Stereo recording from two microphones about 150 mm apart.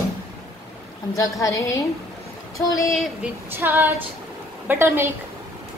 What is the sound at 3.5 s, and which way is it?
A woman's voice, 15° right (ahead or behind).